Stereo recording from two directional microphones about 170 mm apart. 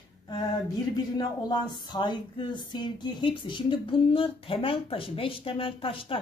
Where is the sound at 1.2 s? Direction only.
25° left (ahead or behind).